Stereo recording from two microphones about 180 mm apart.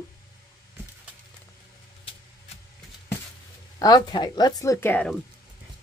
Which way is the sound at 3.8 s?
20° left (ahead or behind).